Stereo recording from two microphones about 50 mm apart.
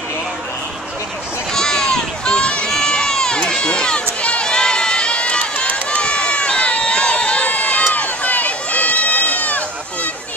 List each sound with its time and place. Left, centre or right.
1.5 s run: centre
2.7 s crowd: centre
4.2 s run: left